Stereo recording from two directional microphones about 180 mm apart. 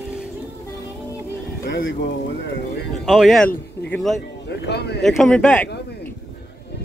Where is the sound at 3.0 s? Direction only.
Centre (ahead or behind).